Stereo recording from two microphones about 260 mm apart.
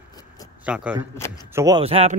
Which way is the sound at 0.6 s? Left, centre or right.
Centre.